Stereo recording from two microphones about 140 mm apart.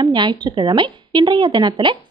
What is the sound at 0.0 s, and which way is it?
Speech, 35° right (ahead or behind).